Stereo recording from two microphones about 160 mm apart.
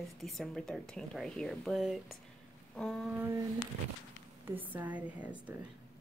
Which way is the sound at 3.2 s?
15° right (ahead or behind).